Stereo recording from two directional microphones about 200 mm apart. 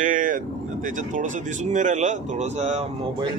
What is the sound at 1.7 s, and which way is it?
Speech, 35° right (ahead or behind).